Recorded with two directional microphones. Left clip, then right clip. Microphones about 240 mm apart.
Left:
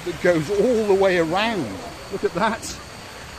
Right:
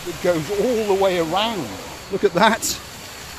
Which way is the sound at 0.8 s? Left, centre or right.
Centre.